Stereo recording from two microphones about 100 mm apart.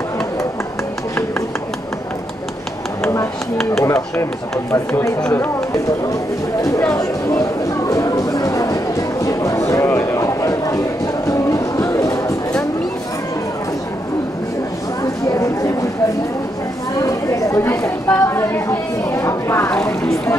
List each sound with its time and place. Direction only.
3.8 s speech: 30° left (ahead or behind)
6.9 s speech: 35° left (ahead or behind)
7.9 s a sound: 35° left (ahead or behind)
11.2 s music: 30° left (ahead or behind)
15.2 s chatter: 30° left (ahead or behind)
17.0 s speech: 30° left (ahead or behind)